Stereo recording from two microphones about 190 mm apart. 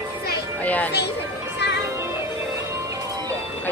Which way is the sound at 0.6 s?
10° left (ahead or behind).